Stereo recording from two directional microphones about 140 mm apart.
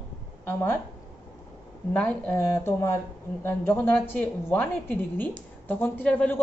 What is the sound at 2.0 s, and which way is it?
A woman's voice, 10° left (ahead or behind).